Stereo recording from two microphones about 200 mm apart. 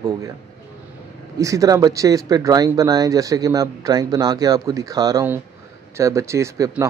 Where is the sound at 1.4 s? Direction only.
15° right (ahead or behind).